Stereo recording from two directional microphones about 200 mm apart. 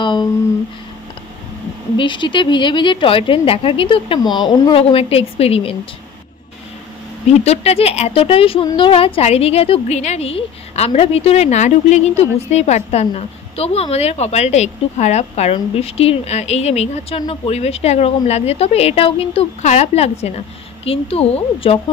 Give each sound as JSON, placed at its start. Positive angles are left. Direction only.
{"t": 0.0, "sound": "a sound", "side_deg": 25}
{"t": 2.0, "sound": "a woman's voice", "side_deg": 25}
{"t": 7.2, "sound": "speech", "side_deg": 30}